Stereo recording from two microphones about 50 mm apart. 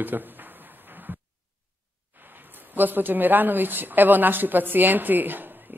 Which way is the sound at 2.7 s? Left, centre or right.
Right.